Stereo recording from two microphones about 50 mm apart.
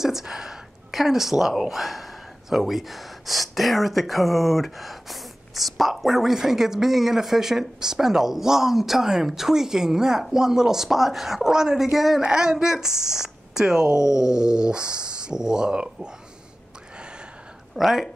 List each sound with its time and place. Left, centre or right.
0.0 s speech: centre
16.9 s a sound: centre
17.7 s speech: centre